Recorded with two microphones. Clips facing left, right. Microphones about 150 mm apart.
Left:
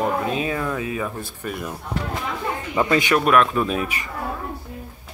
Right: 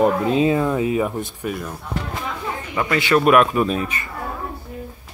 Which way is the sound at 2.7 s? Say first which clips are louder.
Left 2 dB; 20° left (ahead or behind).